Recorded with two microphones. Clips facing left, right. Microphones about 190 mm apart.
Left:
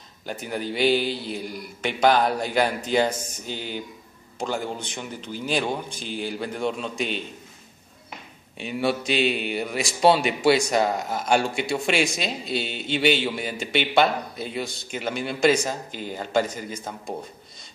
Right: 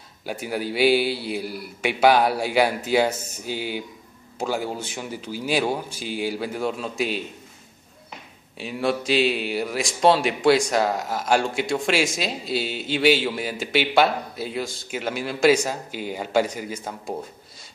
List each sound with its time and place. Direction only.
0.2 s a man's voice: 10° right (ahead or behind)
8.5 s a man's voice: centre (ahead or behind)